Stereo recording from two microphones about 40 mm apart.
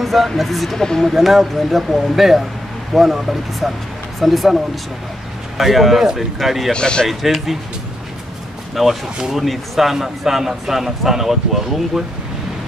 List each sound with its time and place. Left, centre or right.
0.0 s speech: centre
6.7 s speech: left
7.1 s speech: centre
8.7 s a man's voice: centre